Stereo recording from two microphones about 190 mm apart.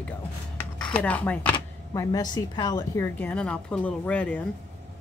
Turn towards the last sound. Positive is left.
turn(degrees=5)  # may be behind; listen again after turning